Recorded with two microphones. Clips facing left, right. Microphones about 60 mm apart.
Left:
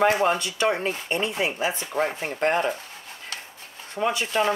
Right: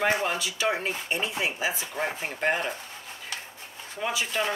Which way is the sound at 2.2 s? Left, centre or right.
Left.